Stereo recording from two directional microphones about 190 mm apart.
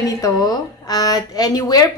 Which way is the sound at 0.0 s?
20° left (ahead or behind).